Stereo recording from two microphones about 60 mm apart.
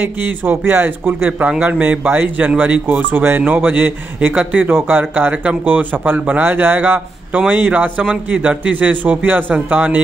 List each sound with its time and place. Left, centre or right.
0.0 s speech: right